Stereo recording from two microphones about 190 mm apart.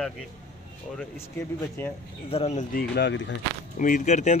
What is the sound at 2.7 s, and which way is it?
Speech, 60° left (ahead or behind).